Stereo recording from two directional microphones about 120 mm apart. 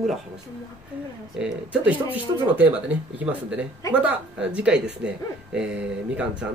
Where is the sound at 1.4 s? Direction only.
10° right (ahead or behind).